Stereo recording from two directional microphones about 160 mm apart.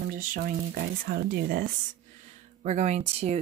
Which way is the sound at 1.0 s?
75° right (ahead or behind).